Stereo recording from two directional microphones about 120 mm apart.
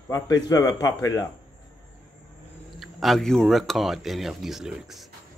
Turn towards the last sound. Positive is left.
turn(degrees=-5)  # may be behind; listen again after turning